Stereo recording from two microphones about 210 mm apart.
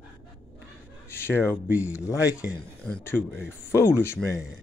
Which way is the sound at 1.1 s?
10° left (ahead or behind).